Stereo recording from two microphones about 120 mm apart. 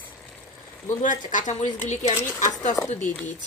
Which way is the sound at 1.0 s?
90° left.